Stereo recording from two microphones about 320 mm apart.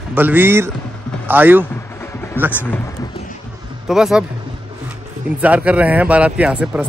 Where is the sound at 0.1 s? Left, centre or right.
Centre.